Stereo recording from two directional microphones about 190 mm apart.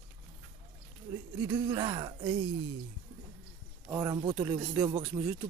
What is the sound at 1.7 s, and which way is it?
Speech, 25° right (ahead or behind).